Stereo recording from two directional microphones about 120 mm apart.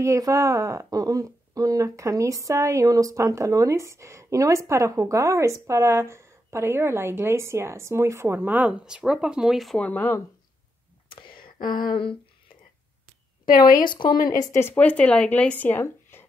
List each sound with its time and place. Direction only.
0.0 s speech: 25° right (ahead or behind); by 9.8 s centre (ahead or behind)
9.8 s speech: 15° left (ahead or behind)
11.1 s a sound: 45° left (ahead or behind)
13.6 s speech: 35° left (ahead or behind)